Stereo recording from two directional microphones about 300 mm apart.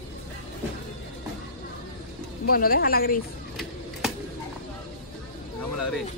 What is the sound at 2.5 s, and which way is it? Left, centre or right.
Speech, left.